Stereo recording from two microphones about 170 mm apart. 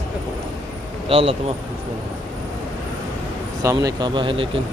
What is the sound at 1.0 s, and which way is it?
Speech, 35° right (ahead or behind).